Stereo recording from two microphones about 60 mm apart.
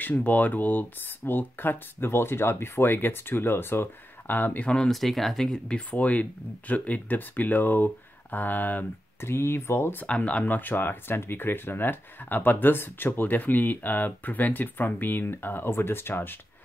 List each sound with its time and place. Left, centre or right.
0.0 s speech: left
4.6 s speech: centre
4.9 s speech: centre
5.7 s speech: centre
9.2 s speech: left
10.0 s speech: left